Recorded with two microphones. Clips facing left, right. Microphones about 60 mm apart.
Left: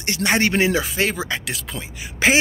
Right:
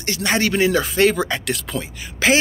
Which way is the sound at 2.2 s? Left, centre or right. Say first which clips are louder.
Right 1 dB; left.